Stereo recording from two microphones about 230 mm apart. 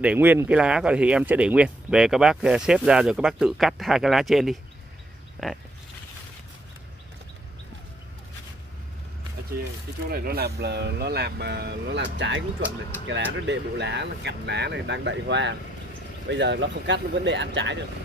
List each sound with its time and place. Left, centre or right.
0.0 s speech: centre
10.0 s speech: right